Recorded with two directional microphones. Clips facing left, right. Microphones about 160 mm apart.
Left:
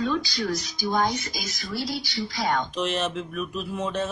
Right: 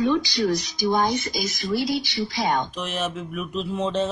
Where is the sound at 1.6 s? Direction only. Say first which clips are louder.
Right 6 dB; 20° right (ahead or behind).